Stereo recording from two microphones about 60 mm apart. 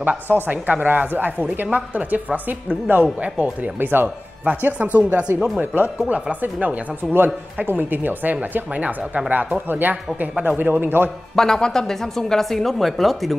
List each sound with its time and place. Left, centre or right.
0.3 s a woman's voice: right
11.3 s a woman's voice: centre